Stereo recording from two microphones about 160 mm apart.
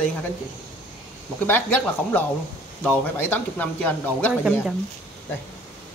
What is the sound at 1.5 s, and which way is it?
Speech, 10° left (ahead or behind).